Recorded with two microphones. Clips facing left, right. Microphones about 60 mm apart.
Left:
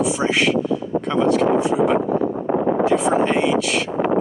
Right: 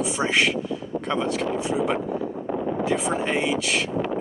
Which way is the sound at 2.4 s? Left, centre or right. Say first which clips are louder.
Left 7 dB; left.